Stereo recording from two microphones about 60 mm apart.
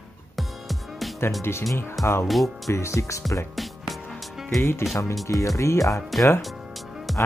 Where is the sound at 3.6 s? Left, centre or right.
Centre.